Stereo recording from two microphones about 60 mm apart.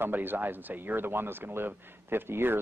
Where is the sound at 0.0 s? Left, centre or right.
Right.